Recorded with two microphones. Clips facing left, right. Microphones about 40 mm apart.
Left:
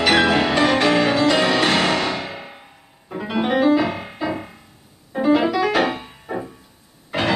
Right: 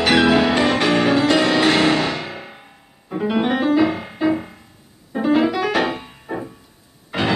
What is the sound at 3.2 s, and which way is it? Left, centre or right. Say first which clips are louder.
Piano: right 1 dB; centre.